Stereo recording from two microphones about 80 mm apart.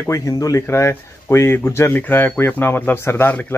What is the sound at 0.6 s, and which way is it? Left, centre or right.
Speech, left.